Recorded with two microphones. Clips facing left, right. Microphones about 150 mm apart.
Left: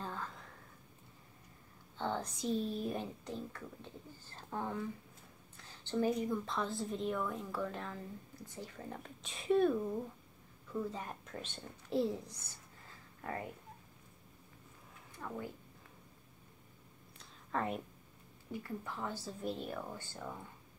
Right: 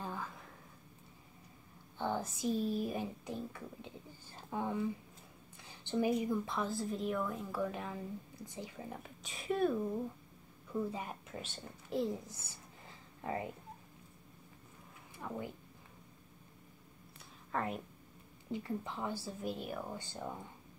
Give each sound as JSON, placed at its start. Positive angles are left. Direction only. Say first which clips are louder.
{"t": 0.0, "sound": "a sound", "louder": "right 1 dB", "side_deg": -10}
{"t": 2.0, "sound": "speech", "louder": "right 1 dB", "side_deg": -10}
{"t": 13.2, "sound": "speech", "louder": "right 3 dB", "side_deg": -15}
{"t": 15.1, "sound": "speech", "louder": "right 1 dB", "side_deg": -20}
{"t": 17.2, "sound": "a sound", "louder": "even", "side_deg": 0}
{"t": 18.5, "sound": "speech", "louder": "right 3 dB", "side_deg": -20}